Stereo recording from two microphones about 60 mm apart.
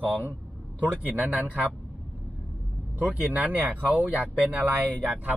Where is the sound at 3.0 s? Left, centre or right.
Right.